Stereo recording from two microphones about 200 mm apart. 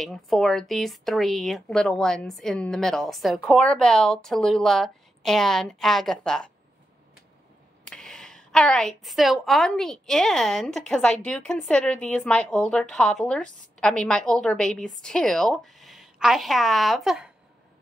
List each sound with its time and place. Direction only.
0.0 s a woman's voice: centre (ahead or behind)
7.8 s a woman's voice: 5° left (ahead or behind)